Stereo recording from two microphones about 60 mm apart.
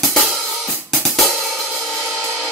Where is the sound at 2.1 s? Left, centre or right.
Left.